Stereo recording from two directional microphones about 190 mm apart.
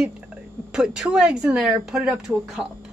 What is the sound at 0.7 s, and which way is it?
Speech, 5° right (ahead or behind).